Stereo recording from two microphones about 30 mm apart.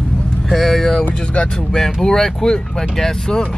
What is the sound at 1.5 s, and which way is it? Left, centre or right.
Speech, centre.